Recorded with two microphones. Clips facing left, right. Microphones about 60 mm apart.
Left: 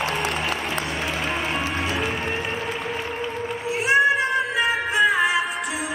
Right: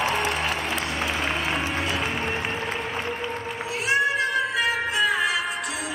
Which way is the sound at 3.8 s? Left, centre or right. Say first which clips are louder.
Left 4 dB; left.